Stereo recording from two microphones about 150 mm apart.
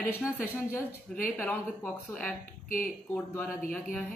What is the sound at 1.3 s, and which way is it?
Speech, 10° left (ahead or behind).